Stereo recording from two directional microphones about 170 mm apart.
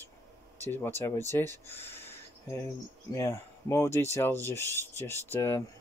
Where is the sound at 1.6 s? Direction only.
15° left (ahead or behind).